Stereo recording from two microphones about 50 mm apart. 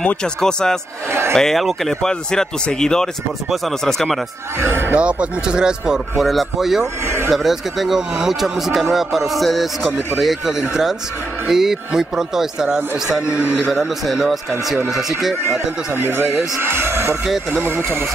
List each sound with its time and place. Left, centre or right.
0.2 s speech: centre
2.0 s speech: centre
4.6 s speech: right
4.9 s speech: right
6.1 s speech: centre
6.8 s a man's voice: right
7.2 s speech: centre
15.9 s speech: right